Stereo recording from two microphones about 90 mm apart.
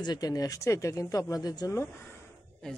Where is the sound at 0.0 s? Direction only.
50° left (ahead or behind).